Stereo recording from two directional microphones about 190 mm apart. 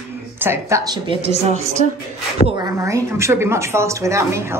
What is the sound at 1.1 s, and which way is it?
Speech, 35° right (ahead or behind).